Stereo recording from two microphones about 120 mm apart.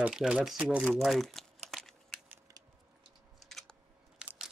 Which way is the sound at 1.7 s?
Centre (ahead or behind).